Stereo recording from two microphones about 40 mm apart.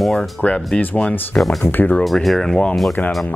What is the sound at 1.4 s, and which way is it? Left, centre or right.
Speech, left.